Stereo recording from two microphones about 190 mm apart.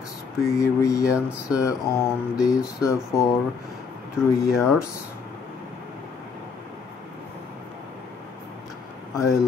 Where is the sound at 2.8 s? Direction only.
15° left (ahead or behind).